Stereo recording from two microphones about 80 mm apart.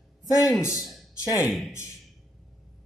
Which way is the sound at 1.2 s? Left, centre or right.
Left.